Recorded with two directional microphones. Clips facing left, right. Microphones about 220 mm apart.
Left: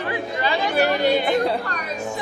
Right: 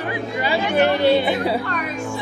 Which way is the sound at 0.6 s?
40° left (ahead or behind).